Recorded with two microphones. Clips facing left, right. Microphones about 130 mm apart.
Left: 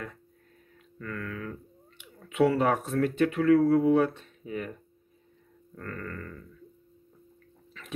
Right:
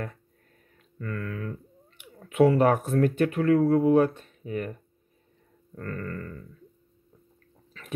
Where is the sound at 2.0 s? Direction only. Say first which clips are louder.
Right 3 dB; 50° right (ahead or behind).